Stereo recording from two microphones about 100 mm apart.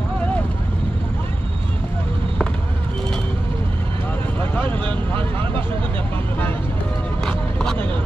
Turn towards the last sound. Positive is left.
turn(degrees=10)  # may be behind; listen again after turning